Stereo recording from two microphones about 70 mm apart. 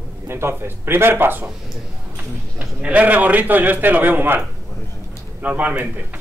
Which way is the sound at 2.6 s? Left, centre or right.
Centre.